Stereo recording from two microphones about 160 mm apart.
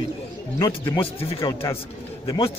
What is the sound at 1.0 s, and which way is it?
Speech, 35° left (ahead or behind).